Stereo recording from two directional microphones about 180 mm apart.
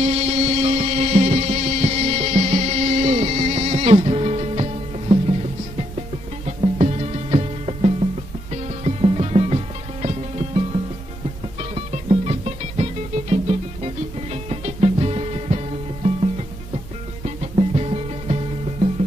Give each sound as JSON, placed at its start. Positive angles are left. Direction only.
{"t": 0.0, "sound": "music", "side_deg": -35}
{"t": 6.4, "sound": "music", "side_deg": -35}
{"t": 17.2, "sound": "music", "side_deg": -35}